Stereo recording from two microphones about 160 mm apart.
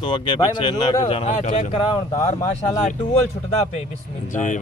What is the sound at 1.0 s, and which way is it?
Speech, 40° left (ahead or behind).